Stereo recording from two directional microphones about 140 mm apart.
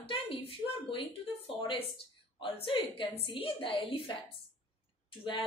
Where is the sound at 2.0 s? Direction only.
40° left (ahead or behind).